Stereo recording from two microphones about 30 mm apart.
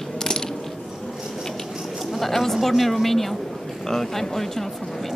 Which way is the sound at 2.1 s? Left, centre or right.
Centre.